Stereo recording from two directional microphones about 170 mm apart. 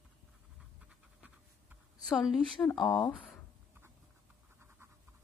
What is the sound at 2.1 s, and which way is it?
Speech, centre (ahead or behind).